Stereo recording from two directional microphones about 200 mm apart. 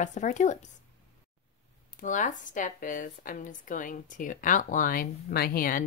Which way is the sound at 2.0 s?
40° left (ahead or behind).